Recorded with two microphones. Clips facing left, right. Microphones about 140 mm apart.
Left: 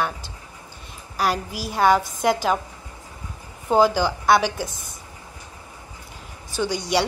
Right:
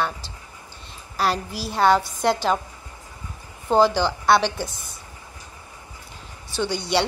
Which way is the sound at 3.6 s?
5° left (ahead or behind).